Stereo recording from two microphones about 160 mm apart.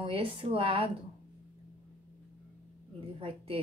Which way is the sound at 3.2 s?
35° right (ahead or behind).